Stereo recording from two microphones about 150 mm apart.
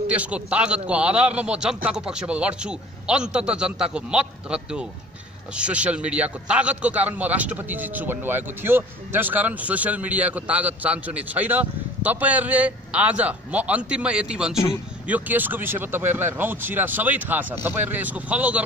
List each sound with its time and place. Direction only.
0.1 s a man's voice: 10° right (ahead or behind)